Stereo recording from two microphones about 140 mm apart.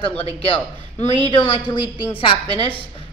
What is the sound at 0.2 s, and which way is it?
A man's voice, 45° left (ahead or behind).